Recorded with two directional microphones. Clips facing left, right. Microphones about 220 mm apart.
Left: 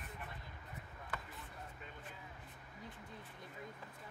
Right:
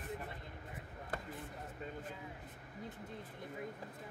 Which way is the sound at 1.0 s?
50° right (ahead or behind).